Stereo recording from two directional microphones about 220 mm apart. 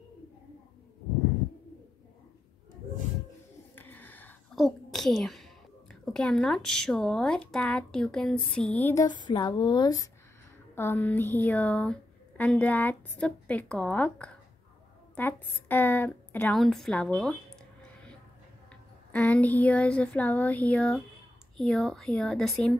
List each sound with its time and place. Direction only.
3.7 s a woman's voice: 10° left (ahead or behind)
9.1 s a woman's voice: 20° left (ahead or behind); by 17.4 s 5° left (ahead or behind)
19.1 s a woman's voice: 5° left (ahead or behind)